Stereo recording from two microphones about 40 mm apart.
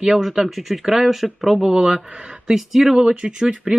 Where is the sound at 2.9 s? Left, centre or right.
Centre.